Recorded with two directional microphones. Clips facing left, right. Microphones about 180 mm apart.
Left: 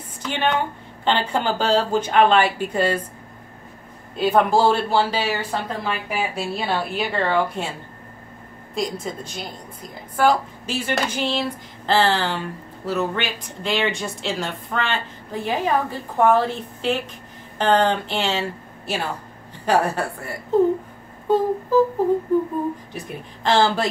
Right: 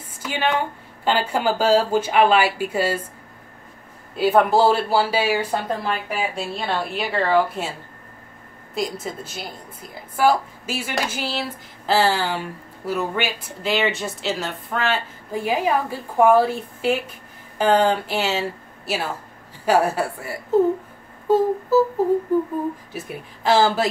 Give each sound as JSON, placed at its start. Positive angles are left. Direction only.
{"t": 0.2, "sound": "a woman's voice", "side_deg": -10}
{"t": 4.2, "sound": "a woman's voice", "side_deg": -5}
{"t": 5.9, "sound": "a woman's voice", "side_deg": 5}
{"t": 8.7, "sound": "a woman's voice", "side_deg": -5}
{"t": 19.6, "sound": "speech", "side_deg": -5}
{"t": 22.9, "sound": "a woman's voice", "side_deg": -5}